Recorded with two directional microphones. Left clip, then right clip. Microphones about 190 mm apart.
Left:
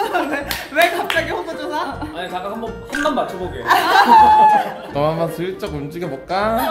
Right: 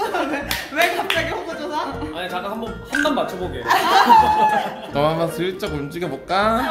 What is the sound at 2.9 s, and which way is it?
Speech, centre (ahead or behind).